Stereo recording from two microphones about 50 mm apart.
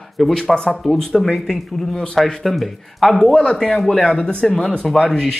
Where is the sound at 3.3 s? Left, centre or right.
Centre.